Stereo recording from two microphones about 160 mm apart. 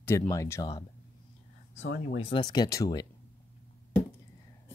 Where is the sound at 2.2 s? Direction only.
30° left (ahead or behind).